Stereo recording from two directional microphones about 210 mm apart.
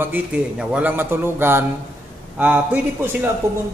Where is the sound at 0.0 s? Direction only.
5° right (ahead or behind).